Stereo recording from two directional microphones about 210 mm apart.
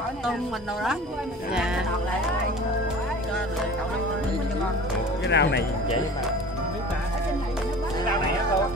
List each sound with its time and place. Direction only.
5.3 s speech: 55° left (ahead or behind)